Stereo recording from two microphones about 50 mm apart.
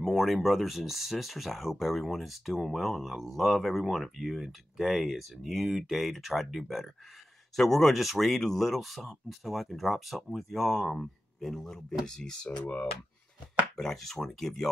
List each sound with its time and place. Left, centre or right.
0.0 s speech: centre
12.4 s speech: left
13.7 s speech: centre